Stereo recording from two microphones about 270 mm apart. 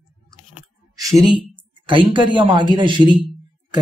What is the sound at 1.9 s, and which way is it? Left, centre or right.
Speech, centre.